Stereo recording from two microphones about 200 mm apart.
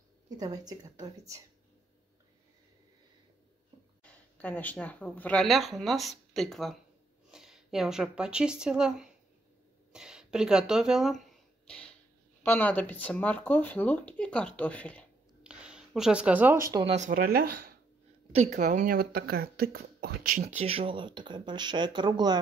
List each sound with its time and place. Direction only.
0.4 s a woman's voice: 20° right (ahead or behind)
4.0 s speech: 5° left (ahead or behind)
9.9 s a sound: 5° right (ahead or behind)
12.4 s speech: 10° left (ahead or behind)
15.4 s a sound: 5° right (ahead or behind)
16.9 s speech: 40° right (ahead or behind)
18.3 s speech: 35° right (ahead or behind)